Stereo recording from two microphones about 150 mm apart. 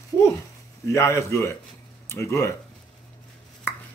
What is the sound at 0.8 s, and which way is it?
A man's voice, 20° left (ahead or behind).